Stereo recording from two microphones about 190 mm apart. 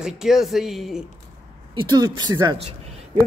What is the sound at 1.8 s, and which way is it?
Speech, 20° right (ahead or behind).